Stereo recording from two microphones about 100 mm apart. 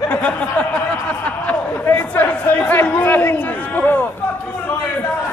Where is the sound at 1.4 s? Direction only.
15° left (ahead or behind).